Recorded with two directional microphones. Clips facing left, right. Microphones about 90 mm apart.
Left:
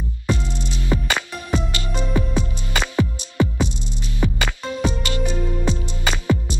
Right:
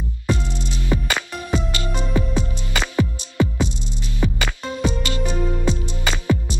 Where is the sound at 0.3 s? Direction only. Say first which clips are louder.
Even; 20° left (ahead or behind).